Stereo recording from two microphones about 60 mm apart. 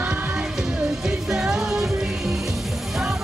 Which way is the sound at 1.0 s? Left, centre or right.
Centre.